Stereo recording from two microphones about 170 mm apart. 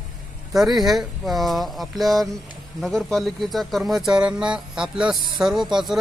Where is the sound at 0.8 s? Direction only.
Centre (ahead or behind).